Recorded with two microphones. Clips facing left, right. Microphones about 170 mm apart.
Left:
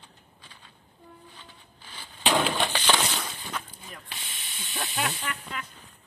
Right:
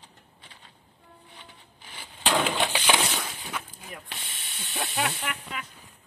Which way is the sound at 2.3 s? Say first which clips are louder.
Even; 5° right (ahead or behind).